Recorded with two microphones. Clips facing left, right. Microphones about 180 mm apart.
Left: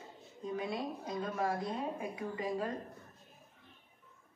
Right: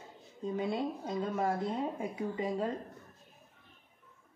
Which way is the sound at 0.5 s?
25° right (ahead or behind).